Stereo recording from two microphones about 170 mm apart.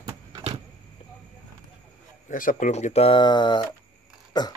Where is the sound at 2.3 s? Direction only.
50° left (ahead or behind).